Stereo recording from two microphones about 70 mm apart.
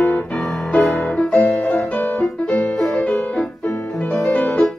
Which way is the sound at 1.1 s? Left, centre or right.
Centre.